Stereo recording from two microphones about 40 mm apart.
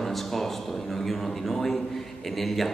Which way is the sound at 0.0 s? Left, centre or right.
Centre.